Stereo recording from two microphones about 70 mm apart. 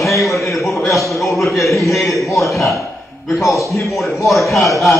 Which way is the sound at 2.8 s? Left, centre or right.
Left.